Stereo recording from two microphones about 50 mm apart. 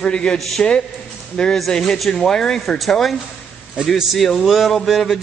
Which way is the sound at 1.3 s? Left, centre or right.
Centre.